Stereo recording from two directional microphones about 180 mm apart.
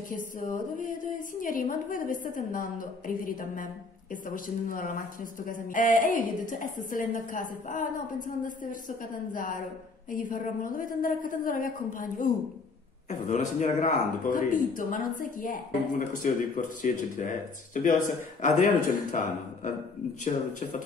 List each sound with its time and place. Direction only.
0.1 s speech: 50° left (ahead or behind)